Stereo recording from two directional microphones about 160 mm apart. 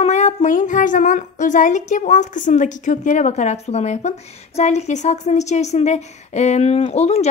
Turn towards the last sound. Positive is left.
turn(degrees=45)  # may be behind; listen again after turning